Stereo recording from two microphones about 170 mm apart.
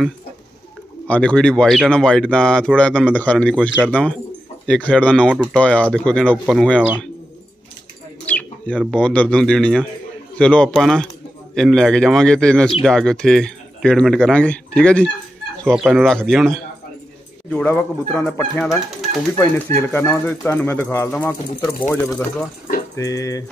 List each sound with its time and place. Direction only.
1.0 s speech: 5° left (ahead or behind)
8.3 s speech: 10° left (ahead or behind)